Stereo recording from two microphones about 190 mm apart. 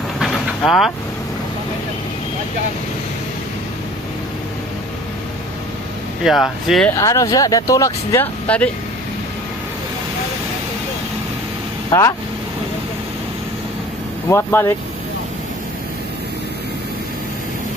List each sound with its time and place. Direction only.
0.2 s vehicle: centre (ahead or behind)
6.2 s speech: centre (ahead or behind)
7.0 s speech: 15° left (ahead or behind)
11.9 s speech: 15° left (ahead or behind)
14.3 s speech: 15° left (ahead or behind)